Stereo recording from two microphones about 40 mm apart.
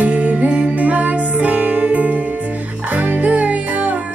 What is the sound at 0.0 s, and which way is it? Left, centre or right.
Music, right.